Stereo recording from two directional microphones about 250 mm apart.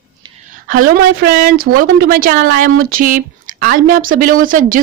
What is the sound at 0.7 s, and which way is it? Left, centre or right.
A woman's voice, right.